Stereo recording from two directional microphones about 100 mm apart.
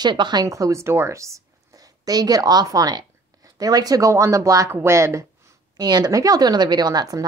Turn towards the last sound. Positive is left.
turn(degrees=-40)  # may be behind; listen again after turning